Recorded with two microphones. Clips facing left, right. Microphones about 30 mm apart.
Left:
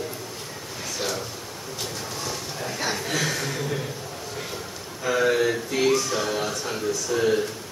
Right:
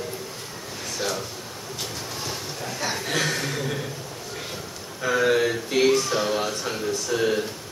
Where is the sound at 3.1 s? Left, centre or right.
Centre.